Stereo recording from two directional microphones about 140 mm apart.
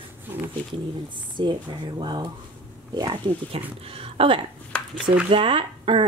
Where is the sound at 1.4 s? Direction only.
35° right (ahead or behind).